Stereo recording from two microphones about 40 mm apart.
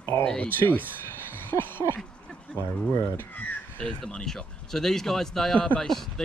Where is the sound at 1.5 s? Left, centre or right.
Left.